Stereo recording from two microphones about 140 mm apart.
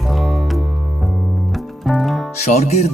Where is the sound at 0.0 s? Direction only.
Centre (ahead or behind).